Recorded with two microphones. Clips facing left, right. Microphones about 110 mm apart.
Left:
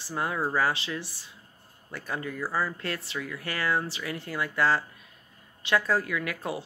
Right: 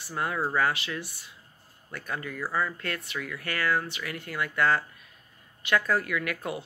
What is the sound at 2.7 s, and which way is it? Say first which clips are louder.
Speech: left 1 dB; 30° left (ahead or behind).